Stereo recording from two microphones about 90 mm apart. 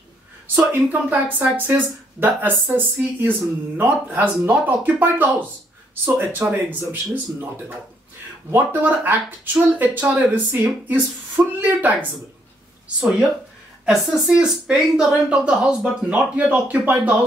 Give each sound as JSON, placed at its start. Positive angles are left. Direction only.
{"t": 0.6, "sound": "speech", "side_deg": -20}
{"t": 12.8, "sound": "speech", "side_deg": -10}